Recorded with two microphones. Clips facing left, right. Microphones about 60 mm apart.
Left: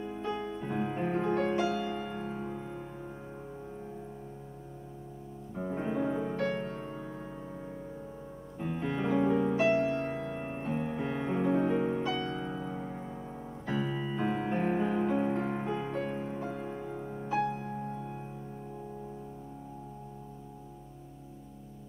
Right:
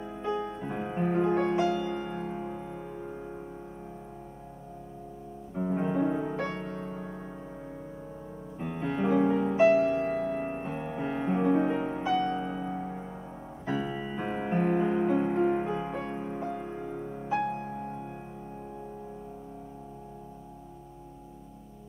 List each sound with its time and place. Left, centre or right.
0.3 s music: right
0.7 s music: centre
5.5 s music: centre
6.6 s music: centre
8.5 s music: centre
10.1 s music: right
10.4 s music: centre
16.0 s music: centre
17.7 s music: centre